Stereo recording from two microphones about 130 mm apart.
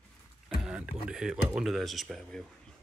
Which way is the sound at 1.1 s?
5° right (ahead or behind).